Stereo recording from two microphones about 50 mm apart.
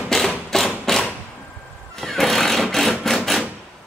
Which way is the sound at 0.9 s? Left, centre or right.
Centre.